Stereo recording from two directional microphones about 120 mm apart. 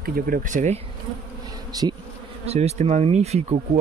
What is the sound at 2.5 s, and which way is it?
Speech, 65° right (ahead or behind).